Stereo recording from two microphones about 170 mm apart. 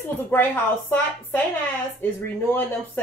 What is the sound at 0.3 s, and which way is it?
A woman's voice, 10° left (ahead or behind).